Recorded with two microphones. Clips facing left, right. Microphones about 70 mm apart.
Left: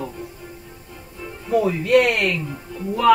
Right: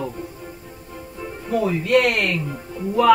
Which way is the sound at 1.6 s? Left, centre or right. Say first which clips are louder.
Even; centre.